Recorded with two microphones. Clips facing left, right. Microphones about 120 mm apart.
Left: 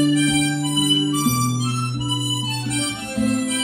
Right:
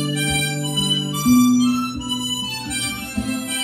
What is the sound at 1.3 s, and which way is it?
Harmonica, centre (ahead or behind).